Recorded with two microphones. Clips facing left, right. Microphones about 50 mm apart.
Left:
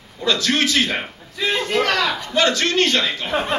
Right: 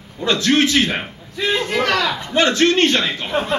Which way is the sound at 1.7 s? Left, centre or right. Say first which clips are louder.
Even; centre.